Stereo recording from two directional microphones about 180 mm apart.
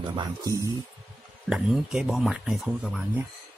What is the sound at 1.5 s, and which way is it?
Speech, 5° right (ahead or behind).